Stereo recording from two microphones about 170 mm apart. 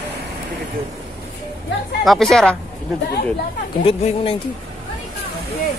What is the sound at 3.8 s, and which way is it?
Speech, 35° left (ahead or behind).